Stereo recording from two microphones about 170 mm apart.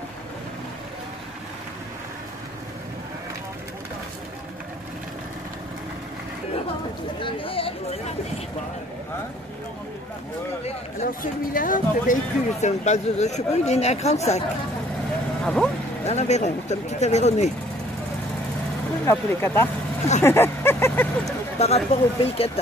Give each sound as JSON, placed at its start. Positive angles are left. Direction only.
{"t": 7.2, "sound": "speech", "side_deg": 30}
{"t": 11.1, "sound": "speech", "side_deg": 55}
{"t": 12.6, "sound": "speech", "side_deg": 40}
{"t": 15.4, "sound": "speech", "side_deg": 5}
{"t": 16.1, "sound": "speech", "side_deg": 40}
{"t": 19.0, "sound": "speech", "side_deg": 15}
{"t": 21.5, "sound": "speech", "side_deg": 40}